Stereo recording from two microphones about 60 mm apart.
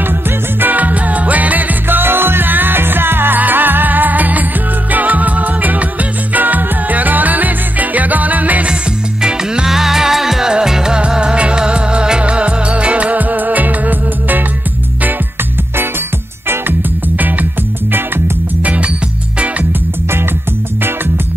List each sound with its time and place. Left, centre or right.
0.6 s music: right
9.2 s music: centre; by 14.4 s right
17.9 s music: right